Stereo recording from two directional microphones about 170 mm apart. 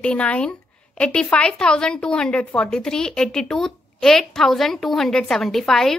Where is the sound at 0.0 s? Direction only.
5° left (ahead or behind).